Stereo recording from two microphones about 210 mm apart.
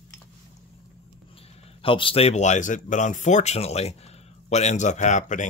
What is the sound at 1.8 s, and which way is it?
Speech, 25° left (ahead or behind).